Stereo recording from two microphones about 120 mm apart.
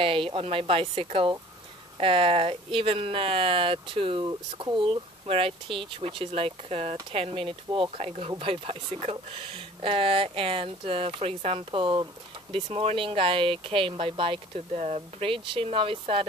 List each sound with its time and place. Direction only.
0.0 s speech: 50° right (ahead or behind)
12.5 s speech: 60° right (ahead or behind)